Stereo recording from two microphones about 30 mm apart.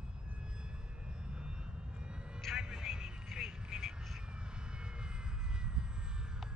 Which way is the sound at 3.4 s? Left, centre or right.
Right.